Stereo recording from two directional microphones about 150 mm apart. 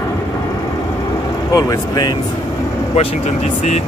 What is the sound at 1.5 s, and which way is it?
Speech, 25° left (ahead or behind).